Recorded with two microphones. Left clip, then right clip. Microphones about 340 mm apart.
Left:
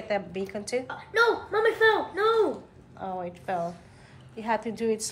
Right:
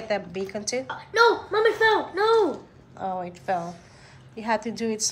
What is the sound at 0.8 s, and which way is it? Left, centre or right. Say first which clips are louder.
A woman's voice: right 5 dB; right.